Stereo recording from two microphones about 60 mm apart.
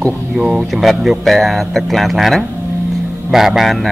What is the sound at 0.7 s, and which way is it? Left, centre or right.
Speech, centre.